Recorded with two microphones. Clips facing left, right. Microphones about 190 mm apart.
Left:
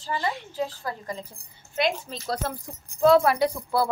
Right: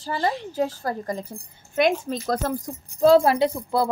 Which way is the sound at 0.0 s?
40° right (ahead or behind).